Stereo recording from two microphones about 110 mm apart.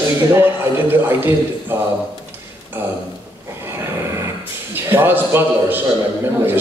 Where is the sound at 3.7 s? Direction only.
25° right (ahead or behind).